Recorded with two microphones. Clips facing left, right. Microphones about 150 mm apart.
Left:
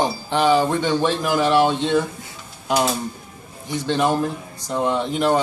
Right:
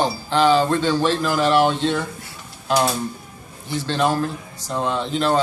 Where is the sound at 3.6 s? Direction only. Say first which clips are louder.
Left 1 dB; 15° left (ahead or behind).